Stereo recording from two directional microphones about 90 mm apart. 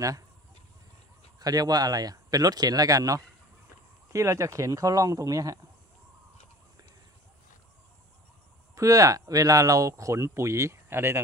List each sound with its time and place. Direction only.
1.4 s speech: 45° right (ahead or behind)
8.7 s speech: 40° right (ahead or behind)